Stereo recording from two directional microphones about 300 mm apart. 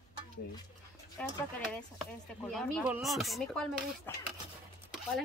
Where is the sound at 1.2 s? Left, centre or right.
Centre.